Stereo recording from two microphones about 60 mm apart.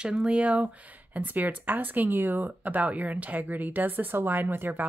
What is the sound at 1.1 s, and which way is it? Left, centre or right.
Speech, right.